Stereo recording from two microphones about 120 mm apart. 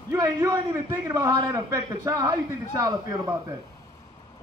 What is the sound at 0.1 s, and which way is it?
A man's voice, 25° right (ahead or behind).